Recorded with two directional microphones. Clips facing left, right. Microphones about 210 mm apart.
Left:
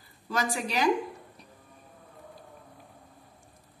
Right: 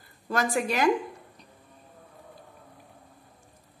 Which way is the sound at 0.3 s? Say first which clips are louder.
Right 4 dB; 55° right (ahead or behind).